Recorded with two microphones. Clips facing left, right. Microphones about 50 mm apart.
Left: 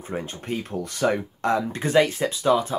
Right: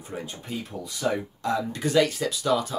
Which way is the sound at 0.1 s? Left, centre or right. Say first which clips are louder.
Left 5 dB; left.